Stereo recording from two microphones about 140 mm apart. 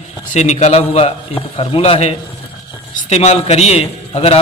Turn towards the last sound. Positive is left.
turn(degrees=45)  # may be behind; listen again after turning